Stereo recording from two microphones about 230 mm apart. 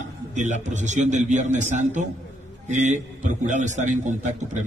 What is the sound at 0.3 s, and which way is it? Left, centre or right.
A man's voice, right.